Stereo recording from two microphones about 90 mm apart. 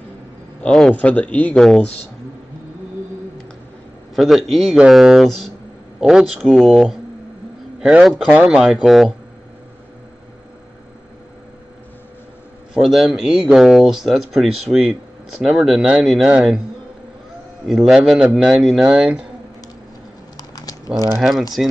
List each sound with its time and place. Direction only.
0.7 s speech: centre (ahead or behind)
0.9 s speech: 15° left (ahead or behind)
1.5 s speech: centre (ahead or behind)
4.1 s speech: centre (ahead or behind)
12.7 s speech: centre (ahead or behind)
17.6 s speech: centre (ahead or behind)
20.3 s a sound: 45° left (ahead or behind)
21.2 s speech: centre (ahead or behind)